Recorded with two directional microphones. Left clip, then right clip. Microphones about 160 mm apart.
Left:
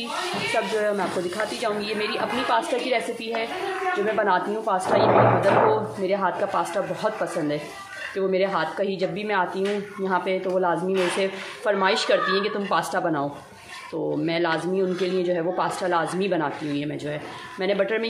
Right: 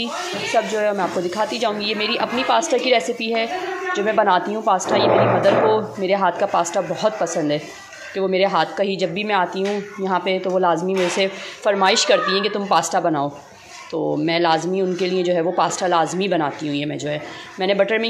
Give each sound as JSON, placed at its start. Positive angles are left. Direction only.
{"t": 0.7, "sound": "speech", "side_deg": -15}